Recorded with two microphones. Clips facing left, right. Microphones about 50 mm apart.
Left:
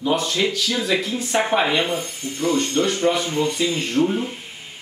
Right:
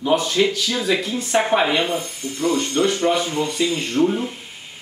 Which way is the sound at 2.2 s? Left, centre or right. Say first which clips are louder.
Right 1 dB; left.